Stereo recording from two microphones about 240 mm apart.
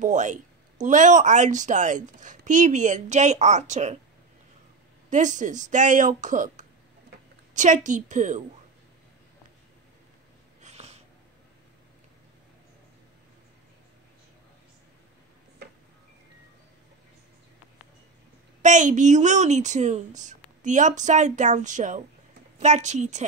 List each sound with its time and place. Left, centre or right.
0.0 s speech: right
5.1 s speech: right
10.6 s wheeze: right
18.6 s a woman's voice: right